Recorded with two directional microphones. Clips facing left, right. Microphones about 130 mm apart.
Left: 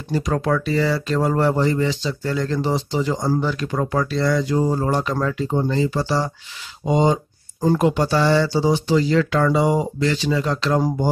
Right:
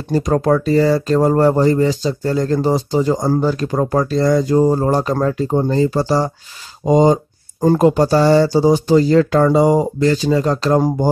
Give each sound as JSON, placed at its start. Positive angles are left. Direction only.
{"t": 0.1, "sound": "speech", "side_deg": -40}